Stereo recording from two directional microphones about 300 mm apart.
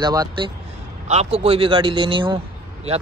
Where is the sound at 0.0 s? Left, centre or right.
Centre.